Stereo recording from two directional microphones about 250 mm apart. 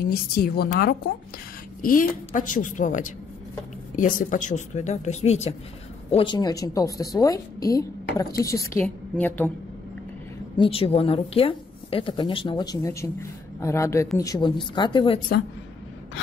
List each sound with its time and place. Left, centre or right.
0.0 s a woman's voice: left; by 9.5 s centre
10.6 s a woman's voice: left